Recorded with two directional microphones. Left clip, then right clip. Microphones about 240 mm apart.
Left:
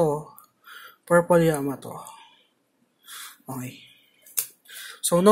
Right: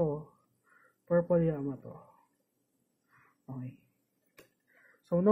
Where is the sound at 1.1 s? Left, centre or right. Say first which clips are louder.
Left 10 dB; left.